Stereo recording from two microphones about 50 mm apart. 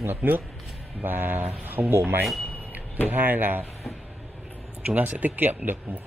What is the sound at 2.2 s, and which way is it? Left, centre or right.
Speech, centre.